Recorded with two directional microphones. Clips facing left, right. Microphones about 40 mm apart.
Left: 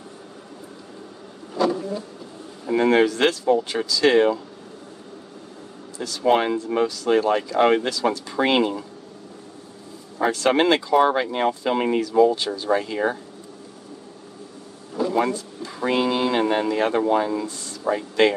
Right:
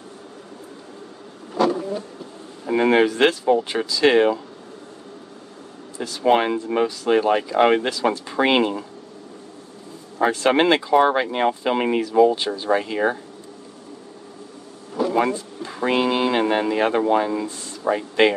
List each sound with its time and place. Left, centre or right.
2.6 s speech: centre
5.9 s speech: right
10.3 s speech: right
15.1 s speech: right